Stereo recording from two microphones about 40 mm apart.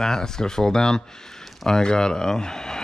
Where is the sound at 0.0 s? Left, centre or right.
Centre.